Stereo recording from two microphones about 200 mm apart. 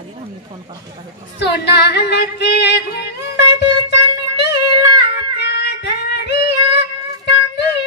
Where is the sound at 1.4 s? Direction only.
55° left (ahead or behind).